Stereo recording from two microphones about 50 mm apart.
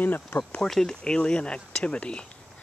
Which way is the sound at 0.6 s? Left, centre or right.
Centre.